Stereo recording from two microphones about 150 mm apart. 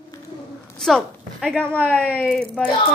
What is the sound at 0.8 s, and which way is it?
A woman's voice, 5° left (ahead or behind).